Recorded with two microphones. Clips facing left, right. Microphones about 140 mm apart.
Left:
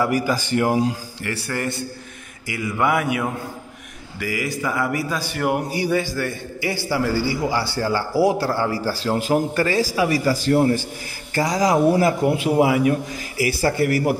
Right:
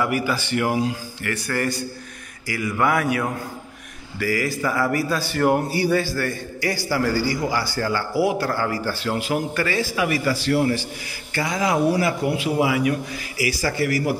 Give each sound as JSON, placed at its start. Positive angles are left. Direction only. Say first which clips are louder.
{"t": 0.0, "sound": "a man's voice", "louder": "left 2 dB", "side_deg": 40}